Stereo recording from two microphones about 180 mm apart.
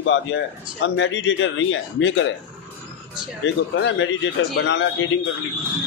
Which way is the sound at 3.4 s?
85° left.